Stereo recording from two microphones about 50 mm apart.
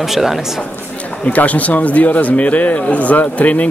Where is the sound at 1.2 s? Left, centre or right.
Left.